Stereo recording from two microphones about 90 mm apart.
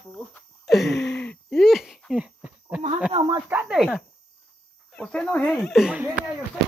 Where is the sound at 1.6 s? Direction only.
5° right (ahead or behind).